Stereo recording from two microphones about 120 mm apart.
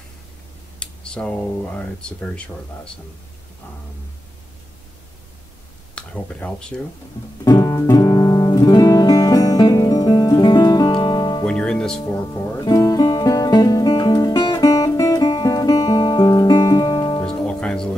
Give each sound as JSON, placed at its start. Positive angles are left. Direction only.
{"t": 0.7, "sound": "speech", "side_deg": 10}
{"t": 5.9, "sound": "speech", "side_deg": 10}
{"t": 7.4, "sound": "music", "side_deg": 30}
{"t": 11.4, "sound": "music", "side_deg": 10}
{"t": 12.4, "sound": "music", "side_deg": 30}
{"t": 17.5, "sound": "music", "side_deg": 5}